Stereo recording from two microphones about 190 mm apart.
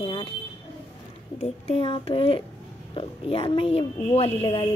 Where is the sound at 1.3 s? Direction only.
35° left (ahead or behind).